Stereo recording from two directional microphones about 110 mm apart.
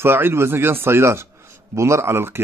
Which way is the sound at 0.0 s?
20° right (ahead or behind).